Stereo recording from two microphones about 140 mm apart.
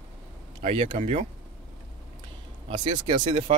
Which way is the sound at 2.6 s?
40° right (ahead or behind).